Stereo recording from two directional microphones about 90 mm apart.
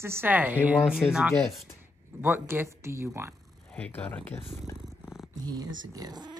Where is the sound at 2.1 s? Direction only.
20° right (ahead or behind).